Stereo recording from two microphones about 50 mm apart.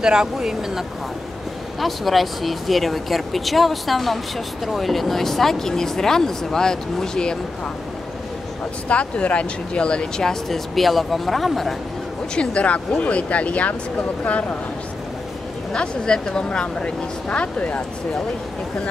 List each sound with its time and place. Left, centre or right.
0.0 s speech: centre
8.8 s speech: left
10.5 s speech: centre
12.4 s speech: left
15.7 s speech: centre